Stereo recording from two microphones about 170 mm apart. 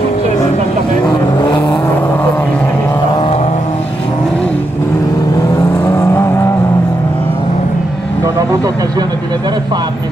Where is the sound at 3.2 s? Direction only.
35° left (ahead or behind).